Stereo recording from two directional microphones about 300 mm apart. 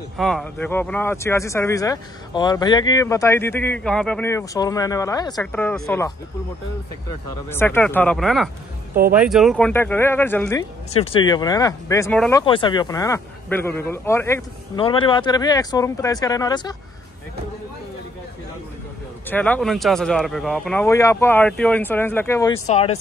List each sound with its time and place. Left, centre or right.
0.2 s speech: centre
7.4 s speech: centre
11.0 s speech: centre
19.2 s speech: centre
22.7 s speech: left